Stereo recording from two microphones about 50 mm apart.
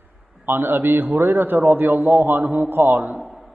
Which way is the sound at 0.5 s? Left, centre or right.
Right.